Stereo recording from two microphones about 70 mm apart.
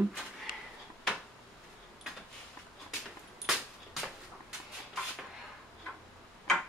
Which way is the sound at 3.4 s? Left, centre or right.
Centre.